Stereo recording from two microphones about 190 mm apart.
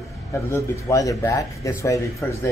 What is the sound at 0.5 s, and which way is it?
A man's voice, 15° left (ahead or behind).